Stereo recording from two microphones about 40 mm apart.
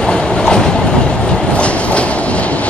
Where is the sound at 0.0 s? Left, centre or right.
Centre.